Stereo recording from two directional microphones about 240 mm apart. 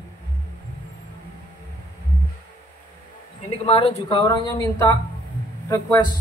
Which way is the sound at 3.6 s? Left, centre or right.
Left.